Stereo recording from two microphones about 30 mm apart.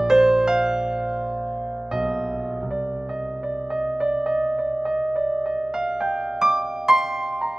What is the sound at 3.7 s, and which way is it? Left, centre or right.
Music, centre.